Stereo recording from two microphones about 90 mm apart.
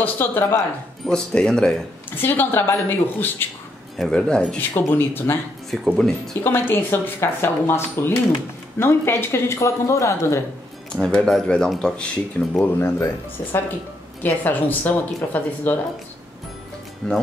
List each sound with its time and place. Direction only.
0.0 s speech: 25° left (ahead or behind)
1.0 s speech: 10° left (ahead or behind)
2.0 s speech: 20° left (ahead or behind)
4.0 s speech: 5° left (ahead or behind)
4.6 s speech: 25° left (ahead or behind)
5.9 s speech: 5° left (ahead or behind)
6.4 s speech: 25° left (ahead or behind)
11.0 s speech: 10° left (ahead or behind)
12.5 s speech: 30° left (ahead or behind)
17.0 s speech: 5° left (ahead or behind)